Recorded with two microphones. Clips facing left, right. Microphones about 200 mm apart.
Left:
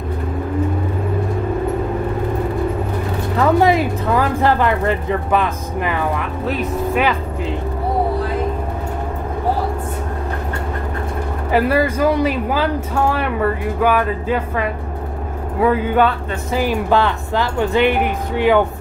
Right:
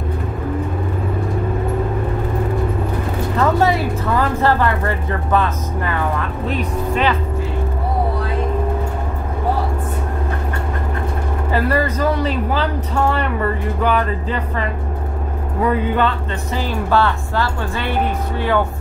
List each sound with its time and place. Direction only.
3.3 s speech: 15° left (ahead or behind)
11.5 s speech: 10° left (ahead or behind)